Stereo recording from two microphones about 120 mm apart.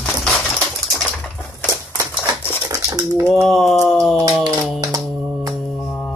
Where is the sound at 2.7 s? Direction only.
25° right (ahead or behind).